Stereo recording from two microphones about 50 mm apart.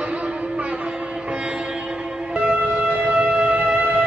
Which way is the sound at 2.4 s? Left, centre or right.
Right.